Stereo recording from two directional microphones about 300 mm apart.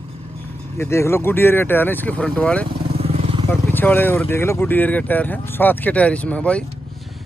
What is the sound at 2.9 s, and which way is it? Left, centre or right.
Vehicle, centre.